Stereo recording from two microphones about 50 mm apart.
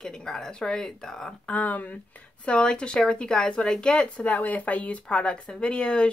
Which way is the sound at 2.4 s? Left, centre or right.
Centre.